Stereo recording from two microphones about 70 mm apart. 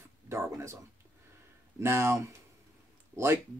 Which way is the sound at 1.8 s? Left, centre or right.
Right.